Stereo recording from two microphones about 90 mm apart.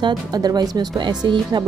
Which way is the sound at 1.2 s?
55° right (ahead or behind).